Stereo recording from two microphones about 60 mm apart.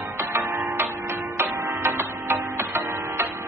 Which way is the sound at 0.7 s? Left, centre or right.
Right.